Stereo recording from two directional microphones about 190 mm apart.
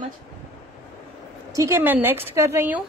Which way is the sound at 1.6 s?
15° right (ahead or behind).